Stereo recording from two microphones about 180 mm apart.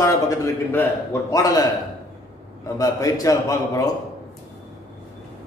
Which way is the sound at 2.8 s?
20° left (ahead or behind).